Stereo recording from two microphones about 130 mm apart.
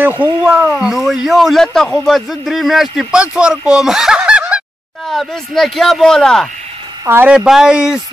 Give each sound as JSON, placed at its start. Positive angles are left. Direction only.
{"t": 0.0, "sound": "speech", "side_deg": -15}
{"t": 5.0, "sound": "speech", "side_deg": 0}
{"t": 7.1, "sound": "speech", "side_deg": -15}
{"t": 7.3, "sound": "speech", "side_deg": -5}